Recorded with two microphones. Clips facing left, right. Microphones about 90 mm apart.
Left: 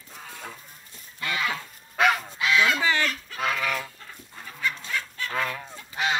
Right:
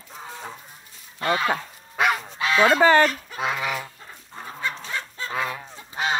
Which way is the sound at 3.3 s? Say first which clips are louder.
Right 1 dB; 20° right (ahead or behind).